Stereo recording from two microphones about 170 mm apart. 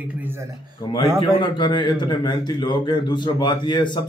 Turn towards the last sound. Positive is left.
turn(degrees=25)  # may be behind; listen again after turning